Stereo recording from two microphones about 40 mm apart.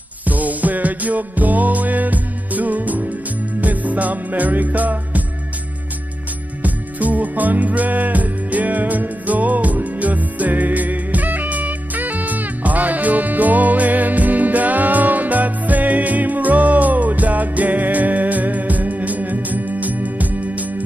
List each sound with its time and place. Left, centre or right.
0.3 s music: right
6.6 s music: right